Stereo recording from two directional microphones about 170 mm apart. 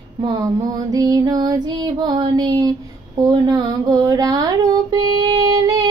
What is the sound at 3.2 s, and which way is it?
Music, 25° right (ahead or behind).